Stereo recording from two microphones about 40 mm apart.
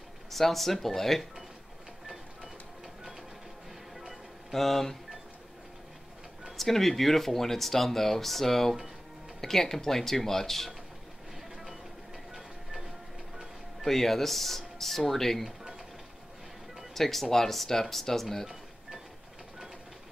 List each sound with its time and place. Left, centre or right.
0.3 s speech: centre
3.0 s music: centre
4.1 s music: centre
6.5 s speech: centre
12.4 s music: centre
13.8 s speech: centre
16.9 s speech: centre